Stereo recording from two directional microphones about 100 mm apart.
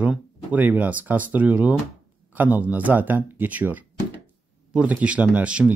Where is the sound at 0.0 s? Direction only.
15° right (ahead or behind).